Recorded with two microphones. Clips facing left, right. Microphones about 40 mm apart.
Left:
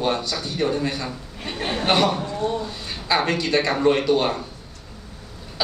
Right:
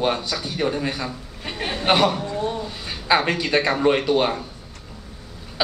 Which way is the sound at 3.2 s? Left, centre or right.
Centre.